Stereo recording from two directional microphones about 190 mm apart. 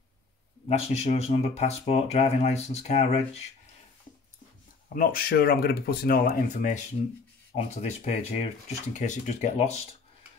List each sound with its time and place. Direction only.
0.7 s speech: 35° left (ahead or behind)
4.8 s speech: 50° left (ahead or behind)